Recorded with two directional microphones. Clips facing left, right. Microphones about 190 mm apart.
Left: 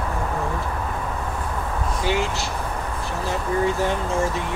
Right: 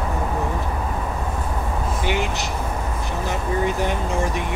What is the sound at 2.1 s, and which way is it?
Speech, 20° right (ahead or behind).